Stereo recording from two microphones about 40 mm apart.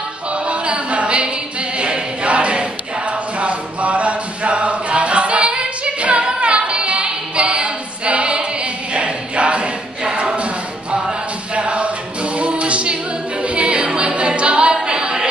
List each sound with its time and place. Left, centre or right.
0.3 s music: right
1.8 s choir: right
6.2 s singing: right
8.9 s a sound: right
11.5 s a capella: right